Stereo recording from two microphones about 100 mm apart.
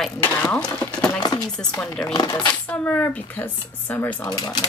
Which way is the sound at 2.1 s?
45° left (ahead or behind).